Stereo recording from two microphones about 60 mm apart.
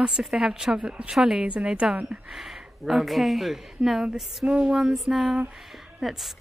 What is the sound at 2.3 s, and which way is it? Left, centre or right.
A woman's voice, centre.